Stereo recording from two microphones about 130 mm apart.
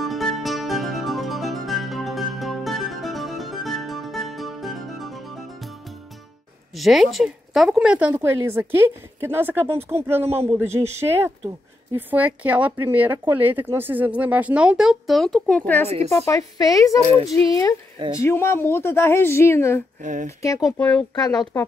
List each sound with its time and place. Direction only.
0.0 s music: centre (ahead or behind)
6.7 s a woman's voice: centre (ahead or behind)
16.3 s speech: 25° left (ahead or behind)
20.0 s speech: 75° right (ahead or behind)
20.2 s speech: 25° left (ahead or behind)
20.7 s speech: 10° left (ahead or behind)
21.1 s speech: 30° left (ahead or behind)